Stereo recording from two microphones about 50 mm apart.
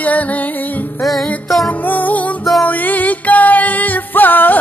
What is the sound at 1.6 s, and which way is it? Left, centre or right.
Music, left.